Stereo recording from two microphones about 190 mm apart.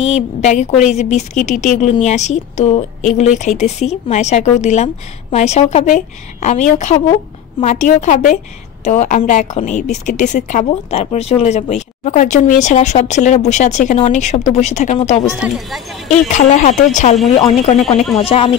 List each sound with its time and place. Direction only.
0.0 s a woman's voice: 35° left (ahead or behind)
15.4 s speech: centre (ahead or behind)
16.3 s a woman's voice: 40° left (ahead or behind)